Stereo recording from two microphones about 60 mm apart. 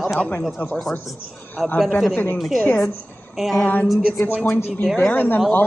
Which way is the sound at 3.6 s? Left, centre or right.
Left.